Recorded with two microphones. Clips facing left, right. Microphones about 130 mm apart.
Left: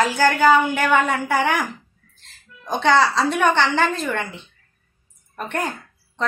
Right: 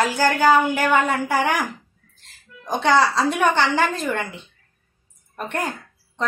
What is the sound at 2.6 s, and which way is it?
A woman's voice, 10° right (ahead or behind).